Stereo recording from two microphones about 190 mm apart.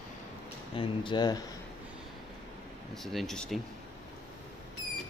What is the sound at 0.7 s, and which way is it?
Speech, 25° left (ahead or behind).